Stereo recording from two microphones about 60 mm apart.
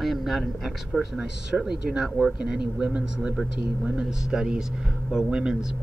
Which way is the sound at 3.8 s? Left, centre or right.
Centre.